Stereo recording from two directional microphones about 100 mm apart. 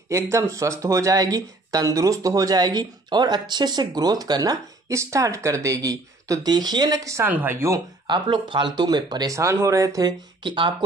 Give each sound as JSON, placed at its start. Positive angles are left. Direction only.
{"t": 0.1, "sound": "speech", "side_deg": -30}
{"t": 6.5, "sound": "speech", "side_deg": -45}
{"t": 7.2, "sound": "speech", "side_deg": -25}
{"t": 8.1, "sound": "speech", "side_deg": -50}
{"t": 9.3, "sound": "speech", "side_deg": -30}
{"t": 10.4, "sound": "speech", "side_deg": -55}